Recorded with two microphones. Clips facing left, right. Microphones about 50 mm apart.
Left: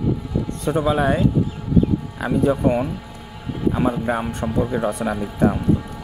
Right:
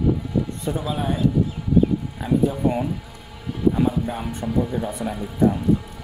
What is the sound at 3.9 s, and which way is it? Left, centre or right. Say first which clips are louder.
Speech: left 3 dB; left.